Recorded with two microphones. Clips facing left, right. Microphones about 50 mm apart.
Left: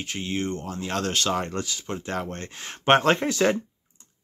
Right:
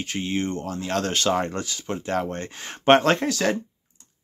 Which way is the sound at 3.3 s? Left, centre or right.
Left.